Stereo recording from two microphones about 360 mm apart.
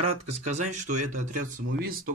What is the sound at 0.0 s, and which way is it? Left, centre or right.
Speech, centre.